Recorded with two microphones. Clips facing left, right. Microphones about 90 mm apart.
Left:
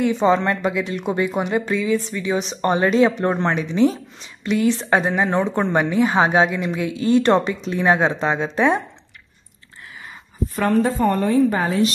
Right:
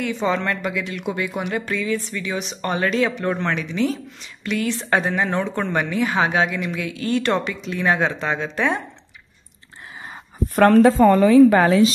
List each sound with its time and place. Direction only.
0.0 s speech: 25° left (ahead or behind)
10.5 s a woman's voice: 70° right (ahead or behind); by 11.8 s 90° right